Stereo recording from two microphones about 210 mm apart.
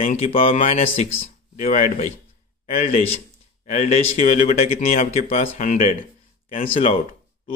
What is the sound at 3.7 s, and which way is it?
Speech, 35° left (ahead or behind).